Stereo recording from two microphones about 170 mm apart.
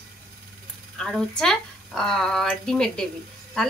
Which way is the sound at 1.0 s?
5° left (ahead or behind).